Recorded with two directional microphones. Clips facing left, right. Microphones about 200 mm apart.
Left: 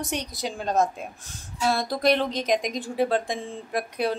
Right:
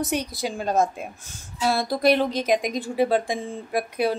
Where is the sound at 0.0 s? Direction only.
5° right (ahead or behind).